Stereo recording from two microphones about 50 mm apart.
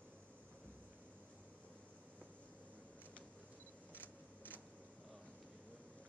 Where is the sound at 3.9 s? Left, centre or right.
Left.